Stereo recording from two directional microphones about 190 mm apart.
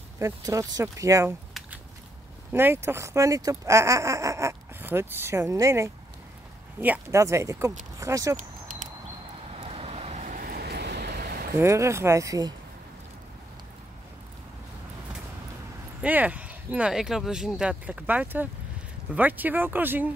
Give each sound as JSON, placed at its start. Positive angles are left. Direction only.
{"t": 0.7, "sound": "speech", "side_deg": -15}
{"t": 2.5, "sound": "speech", "side_deg": -10}
{"t": 8.4, "sound": "a sound", "side_deg": -45}
{"t": 9.5, "sound": "vehicle", "side_deg": -30}
{"t": 11.5, "sound": "speech", "side_deg": -15}
{"t": 16.0, "sound": "speech", "side_deg": -10}